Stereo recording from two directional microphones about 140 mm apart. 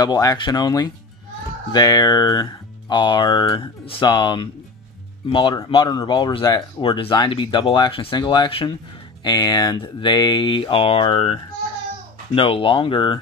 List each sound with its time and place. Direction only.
0.0 s speech: 25° left (ahead or behind)
12.4 s speech: 40° left (ahead or behind)